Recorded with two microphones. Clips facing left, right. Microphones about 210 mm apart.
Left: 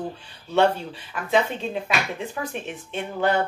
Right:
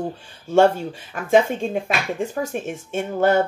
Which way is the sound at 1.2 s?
45° right (ahead or behind).